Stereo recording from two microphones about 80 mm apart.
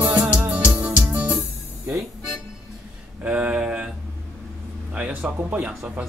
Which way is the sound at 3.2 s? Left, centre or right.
Centre.